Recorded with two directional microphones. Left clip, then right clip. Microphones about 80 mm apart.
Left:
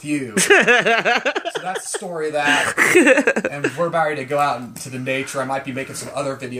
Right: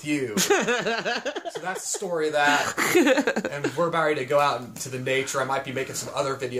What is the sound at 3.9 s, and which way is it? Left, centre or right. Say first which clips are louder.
Speech: left 3 dB; right.